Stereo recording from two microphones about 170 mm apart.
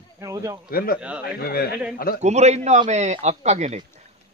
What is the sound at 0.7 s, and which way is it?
Speech, 60° left (ahead or behind).